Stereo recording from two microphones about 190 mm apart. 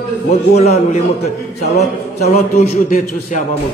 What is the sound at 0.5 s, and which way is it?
A man's voice, 35° left (ahead or behind).